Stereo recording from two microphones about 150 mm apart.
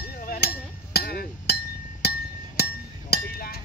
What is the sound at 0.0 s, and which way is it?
Chink, 85° left.